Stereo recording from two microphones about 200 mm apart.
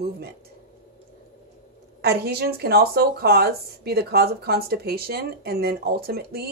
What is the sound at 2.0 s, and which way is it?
Speech, 50° right (ahead or behind).